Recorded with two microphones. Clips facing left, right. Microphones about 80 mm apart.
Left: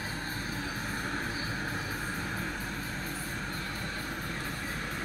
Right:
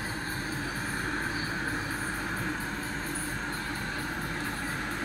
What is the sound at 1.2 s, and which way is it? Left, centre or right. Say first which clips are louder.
Vehicle: right 3 dB; right.